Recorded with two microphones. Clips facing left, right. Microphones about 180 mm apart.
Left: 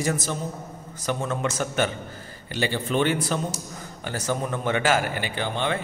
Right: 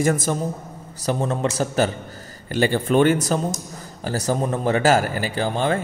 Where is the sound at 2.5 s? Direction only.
45° right (ahead or behind).